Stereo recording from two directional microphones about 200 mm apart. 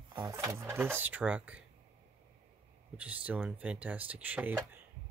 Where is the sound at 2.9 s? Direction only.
5° right (ahead or behind).